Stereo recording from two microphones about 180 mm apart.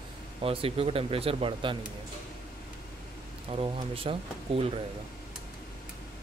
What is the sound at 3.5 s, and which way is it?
Speech, 30° right (ahead or behind).